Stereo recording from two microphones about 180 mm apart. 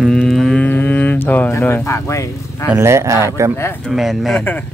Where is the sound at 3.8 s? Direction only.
Centre (ahead or behind).